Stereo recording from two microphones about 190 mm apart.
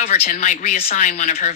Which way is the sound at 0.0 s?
35° left (ahead or behind).